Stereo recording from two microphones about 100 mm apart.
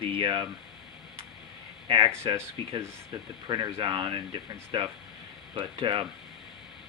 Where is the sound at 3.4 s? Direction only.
45° right (ahead or behind).